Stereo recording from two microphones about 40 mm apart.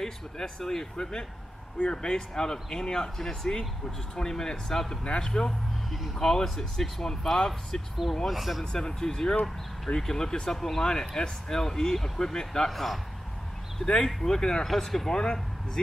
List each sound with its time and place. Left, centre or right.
0.0 s speech: centre
8.3 s speech: centre
8.7 s speech: centre
12.7 s speech: centre
14.0 s speech: centre